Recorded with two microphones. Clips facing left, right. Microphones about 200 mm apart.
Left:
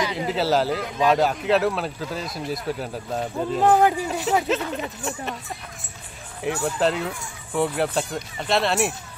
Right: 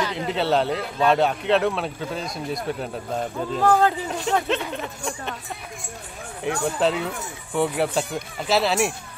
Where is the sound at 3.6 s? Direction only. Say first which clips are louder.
Left 1 dB; 20° left (ahead or behind).